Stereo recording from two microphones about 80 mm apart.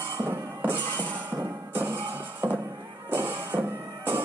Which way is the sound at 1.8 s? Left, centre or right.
Right.